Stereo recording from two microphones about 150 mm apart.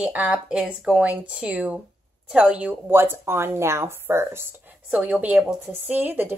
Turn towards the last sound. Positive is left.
turn(degrees=-10)  # may be behind; listen again after turning